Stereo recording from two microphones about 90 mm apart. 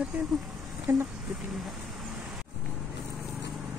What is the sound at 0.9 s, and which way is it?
Speech, 25° right (ahead or behind).